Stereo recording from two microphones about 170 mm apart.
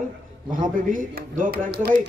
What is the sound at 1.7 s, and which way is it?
Speech, 75° right (ahead or behind).